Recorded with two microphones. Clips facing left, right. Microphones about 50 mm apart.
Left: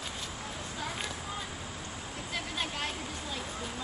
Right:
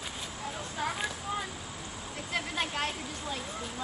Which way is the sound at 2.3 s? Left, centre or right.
Right.